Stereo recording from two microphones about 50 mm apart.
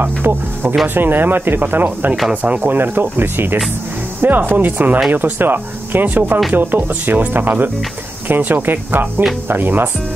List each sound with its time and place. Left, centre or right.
0.2 s speech: right
2.4 s speech: right
2.7 s speech: right